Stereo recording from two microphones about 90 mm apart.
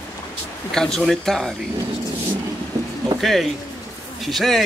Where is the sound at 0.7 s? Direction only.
5° left (ahead or behind).